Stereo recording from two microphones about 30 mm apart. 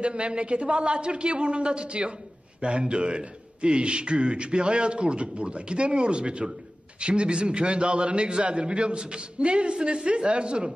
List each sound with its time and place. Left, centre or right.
0.0 s a man's voice: right